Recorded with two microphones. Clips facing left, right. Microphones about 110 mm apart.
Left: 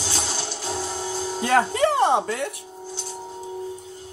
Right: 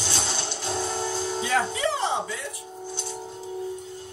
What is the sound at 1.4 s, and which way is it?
Music, 55° left (ahead or behind).